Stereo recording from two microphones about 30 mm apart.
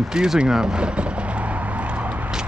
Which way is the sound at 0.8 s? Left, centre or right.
Right.